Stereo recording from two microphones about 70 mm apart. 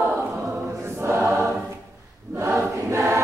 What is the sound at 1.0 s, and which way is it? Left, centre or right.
Choir, right.